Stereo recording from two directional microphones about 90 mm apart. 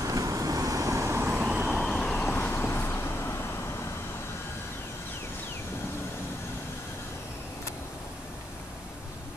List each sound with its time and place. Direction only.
0.0 s vehicle: 40° right (ahead or behind)
1.3 s vehicle: 15° right (ahead or behind)
1.7 s vehicle: centre (ahead or behind)
2.1 s vehicle: 20° left (ahead or behind)